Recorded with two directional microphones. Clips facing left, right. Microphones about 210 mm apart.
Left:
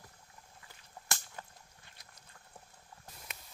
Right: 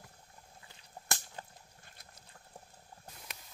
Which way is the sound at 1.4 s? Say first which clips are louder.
Right 1 dB; 30° right (ahead or behind).